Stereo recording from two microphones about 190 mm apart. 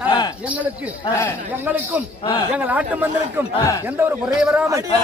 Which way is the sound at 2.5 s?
10° right (ahead or behind).